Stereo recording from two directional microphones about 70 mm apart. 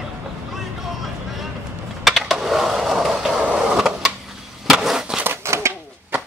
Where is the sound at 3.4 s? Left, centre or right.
Centre.